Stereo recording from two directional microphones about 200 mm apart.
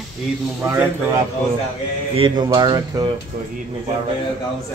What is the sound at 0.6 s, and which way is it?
Speech, 15° right (ahead or behind).